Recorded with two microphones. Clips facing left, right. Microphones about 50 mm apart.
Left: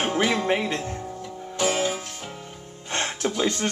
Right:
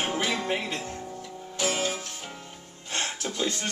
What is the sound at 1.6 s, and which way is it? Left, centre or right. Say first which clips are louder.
Music: left 4 dB; centre.